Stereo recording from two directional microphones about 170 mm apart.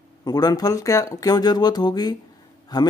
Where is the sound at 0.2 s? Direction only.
20° left (ahead or behind).